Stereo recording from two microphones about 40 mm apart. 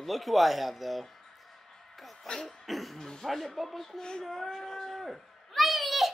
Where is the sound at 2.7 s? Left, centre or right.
Centre.